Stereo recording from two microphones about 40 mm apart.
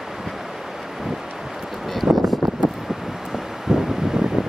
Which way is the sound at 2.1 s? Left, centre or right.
Centre.